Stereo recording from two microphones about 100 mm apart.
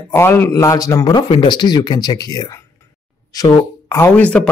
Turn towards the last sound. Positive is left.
turn(degrees=15)  # may be behind; listen again after turning